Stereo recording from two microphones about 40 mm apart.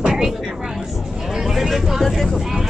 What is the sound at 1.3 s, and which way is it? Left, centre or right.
Vehicle, centre.